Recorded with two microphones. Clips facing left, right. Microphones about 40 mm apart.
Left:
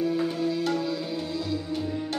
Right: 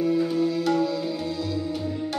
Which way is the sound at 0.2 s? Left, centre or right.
Left.